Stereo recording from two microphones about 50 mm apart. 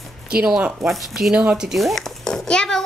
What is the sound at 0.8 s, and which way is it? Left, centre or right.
Speech, centre.